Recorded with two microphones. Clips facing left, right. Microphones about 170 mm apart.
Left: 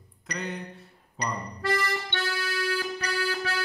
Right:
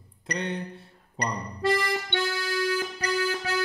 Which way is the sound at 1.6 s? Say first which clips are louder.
Right 4 dB; 25° right (ahead or behind).